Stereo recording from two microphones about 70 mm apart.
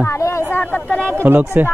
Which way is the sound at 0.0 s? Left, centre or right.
Left.